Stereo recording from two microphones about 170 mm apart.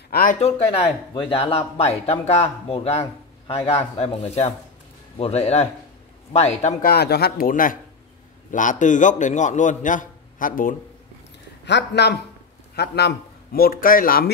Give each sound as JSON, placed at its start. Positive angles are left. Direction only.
{"t": 0.1, "sound": "speech", "side_deg": 55}
{"t": 0.4, "sound": "speech", "side_deg": 35}
{"t": 6.8, "sound": "a man's voice", "side_deg": 65}
{"t": 11.6, "sound": "a man's voice", "side_deg": 85}